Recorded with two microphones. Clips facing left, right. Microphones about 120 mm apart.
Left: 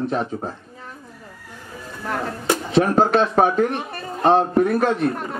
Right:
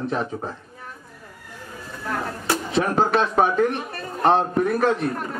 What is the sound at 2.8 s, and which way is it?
Speech, 35° left (ahead or behind).